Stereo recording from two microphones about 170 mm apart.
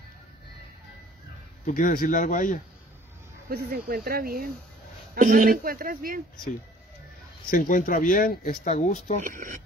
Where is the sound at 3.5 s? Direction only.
65° right (ahead or behind).